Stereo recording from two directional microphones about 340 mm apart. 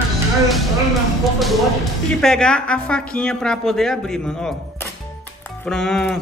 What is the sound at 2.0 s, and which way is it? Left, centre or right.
Speech, centre.